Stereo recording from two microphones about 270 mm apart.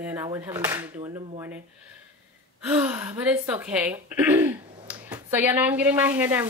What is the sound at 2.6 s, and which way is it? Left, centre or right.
Speech, centre.